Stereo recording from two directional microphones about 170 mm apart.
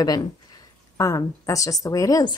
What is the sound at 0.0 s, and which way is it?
A woman's voice, 25° left (ahead or behind).